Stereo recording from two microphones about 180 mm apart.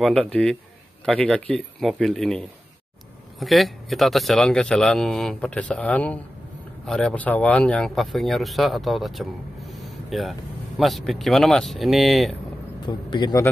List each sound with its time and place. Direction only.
0.0 s speech: 5° left (ahead or behind)
12.8 s a man's voice: 25° left (ahead or behind)